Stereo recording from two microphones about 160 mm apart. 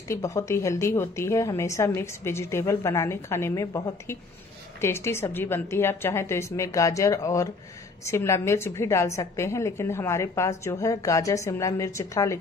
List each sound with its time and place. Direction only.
0.1 s a woman's voice: 20° left (ahead or behind)